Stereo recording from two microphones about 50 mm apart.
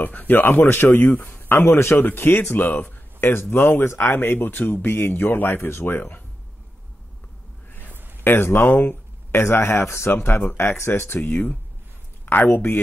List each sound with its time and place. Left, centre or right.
0.0 s speech: left
1.7 s speech: left
7.9 s a sound: right
8.2 s speech: left